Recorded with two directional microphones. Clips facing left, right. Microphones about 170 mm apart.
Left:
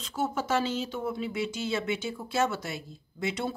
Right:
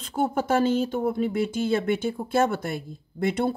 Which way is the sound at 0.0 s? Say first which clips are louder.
Right 5 dB; 55° right (ahead or behind).